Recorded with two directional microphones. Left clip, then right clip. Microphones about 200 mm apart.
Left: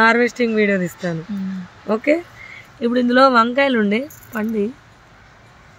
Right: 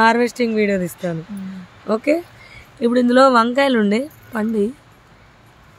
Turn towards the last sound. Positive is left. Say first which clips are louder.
# right 2 dB
turn(degrees=-15)  # may be behind; listen again after turning